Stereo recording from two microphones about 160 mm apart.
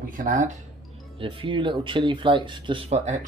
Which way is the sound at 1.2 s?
30° right (ahead or behind).